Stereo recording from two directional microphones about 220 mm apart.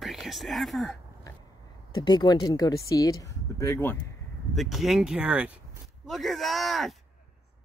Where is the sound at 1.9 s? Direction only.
20° left (ahead or behind).